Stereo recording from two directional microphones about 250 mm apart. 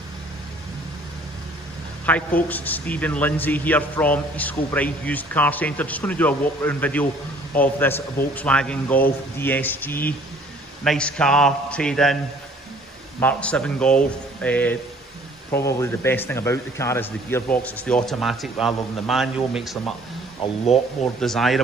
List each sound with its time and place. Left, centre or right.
2.0 s a man's voice: centre
13.2 s speech: centre
20.6 s speech: left
21.2 s speech: centre